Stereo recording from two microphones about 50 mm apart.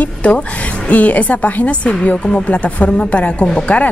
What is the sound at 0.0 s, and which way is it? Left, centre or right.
Music, left.